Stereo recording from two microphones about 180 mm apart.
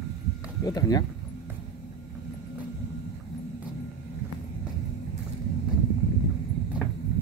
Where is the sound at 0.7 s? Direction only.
20° left (ahead or behind).